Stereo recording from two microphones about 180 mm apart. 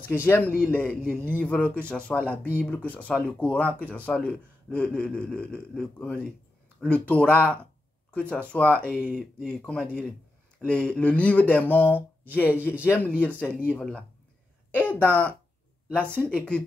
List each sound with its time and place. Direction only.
0.1 s speech: 10° left (ahead or behind)
1.0 s a man's voice: 10° right (ahead or behind)
1.4 s speech: 5° left (ahead or behind)